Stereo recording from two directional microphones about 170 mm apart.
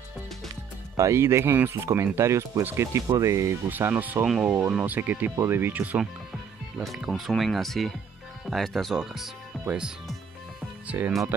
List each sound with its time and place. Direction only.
0.9 s speech: 15° right (ahead or behind)